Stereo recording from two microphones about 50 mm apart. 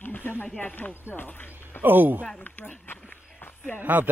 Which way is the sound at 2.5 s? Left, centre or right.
Left.